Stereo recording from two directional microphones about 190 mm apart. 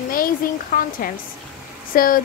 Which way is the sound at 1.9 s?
50° left (ahead or behind).